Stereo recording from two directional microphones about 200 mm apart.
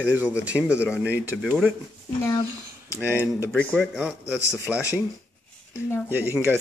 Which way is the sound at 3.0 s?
10° right (ahead or behind).